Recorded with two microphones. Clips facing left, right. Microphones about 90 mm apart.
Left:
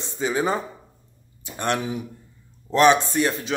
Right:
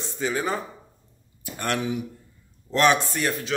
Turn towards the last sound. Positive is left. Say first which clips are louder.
# left 4 dB
turn(degrees=20)  # may be behind; listen again after turning